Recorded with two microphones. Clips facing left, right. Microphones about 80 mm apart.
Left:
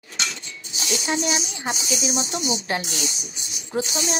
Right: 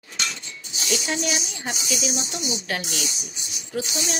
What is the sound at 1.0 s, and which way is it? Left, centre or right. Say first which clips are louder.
Speech: left 2 dB; left.